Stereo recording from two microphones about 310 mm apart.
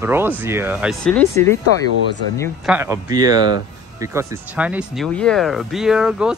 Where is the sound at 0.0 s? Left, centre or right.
Centre.